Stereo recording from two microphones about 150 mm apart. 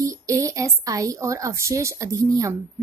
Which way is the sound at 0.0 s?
20° right (ahead or behind).